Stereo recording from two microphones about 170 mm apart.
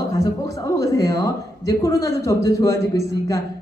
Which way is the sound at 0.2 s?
20° left (ahead or behind).